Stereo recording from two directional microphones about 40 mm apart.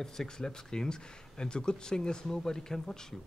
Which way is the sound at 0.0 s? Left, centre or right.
Centre.